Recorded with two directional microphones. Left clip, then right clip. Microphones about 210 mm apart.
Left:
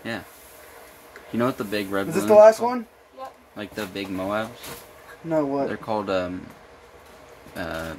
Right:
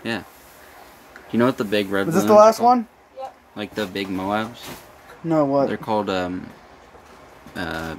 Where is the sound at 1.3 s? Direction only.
10° right (ahead or behind).